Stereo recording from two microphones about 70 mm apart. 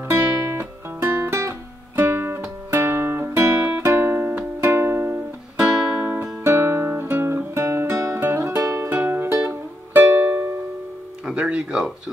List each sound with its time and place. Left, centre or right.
0.0 s music: right
6.4 s guitar: right
8.5 s music: right
8.8 s music: right
11.2 s music: centre